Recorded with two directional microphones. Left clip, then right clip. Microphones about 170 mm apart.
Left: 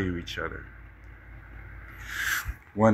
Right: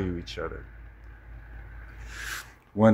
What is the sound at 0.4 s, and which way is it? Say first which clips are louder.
Speech: even; 20° right (ahead or behind).